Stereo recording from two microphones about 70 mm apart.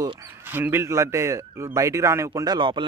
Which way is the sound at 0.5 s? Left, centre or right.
Right.